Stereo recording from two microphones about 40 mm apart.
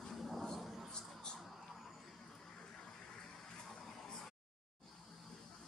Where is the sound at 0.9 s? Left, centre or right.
Centre.